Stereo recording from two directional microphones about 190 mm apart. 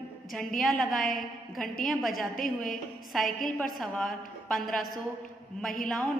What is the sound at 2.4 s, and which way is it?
Speech, 45° left (ahead or behind).